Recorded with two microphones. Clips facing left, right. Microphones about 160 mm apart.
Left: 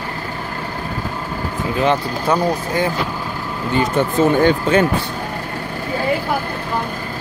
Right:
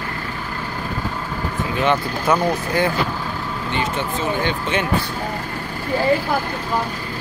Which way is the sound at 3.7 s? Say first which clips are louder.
Left 8 dB; 40° left (ahead or behind).